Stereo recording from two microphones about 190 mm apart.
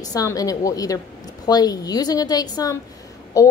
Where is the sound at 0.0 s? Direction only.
20° left (ahead or behind).